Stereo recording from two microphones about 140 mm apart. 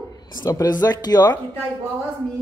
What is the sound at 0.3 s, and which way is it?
Speech, 25° left (ahead or behind).